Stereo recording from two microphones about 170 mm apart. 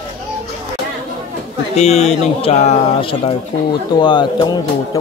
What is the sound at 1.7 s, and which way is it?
Speech, 40° left (ahead or behind).